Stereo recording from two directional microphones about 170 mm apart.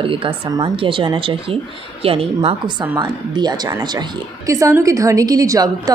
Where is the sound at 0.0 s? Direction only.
30° right (ahead or behind).